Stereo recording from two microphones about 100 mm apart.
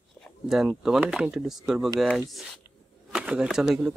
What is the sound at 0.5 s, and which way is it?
Speech, 5° right (ahead or behind).